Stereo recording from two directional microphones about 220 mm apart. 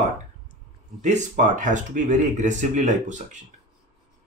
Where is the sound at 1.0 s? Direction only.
30° right (ahead or behind).